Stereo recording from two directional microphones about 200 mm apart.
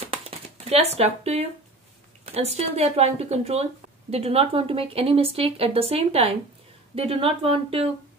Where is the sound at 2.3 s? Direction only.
30° right (ahead or behind).